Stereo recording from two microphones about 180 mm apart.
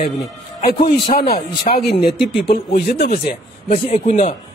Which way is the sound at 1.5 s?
30° left (ahead or behind).